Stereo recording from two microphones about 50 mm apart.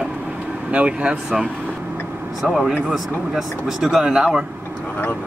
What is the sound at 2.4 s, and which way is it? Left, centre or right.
Speech, centre.